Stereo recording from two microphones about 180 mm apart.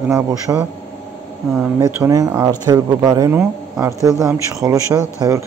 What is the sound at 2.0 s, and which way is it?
A man's voice, 20° right (ahead or behind).